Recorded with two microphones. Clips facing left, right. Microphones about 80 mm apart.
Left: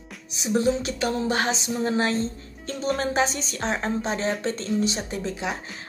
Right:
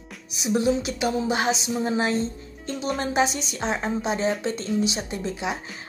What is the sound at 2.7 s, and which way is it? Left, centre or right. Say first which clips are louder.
Speech: left 1 dB; centre.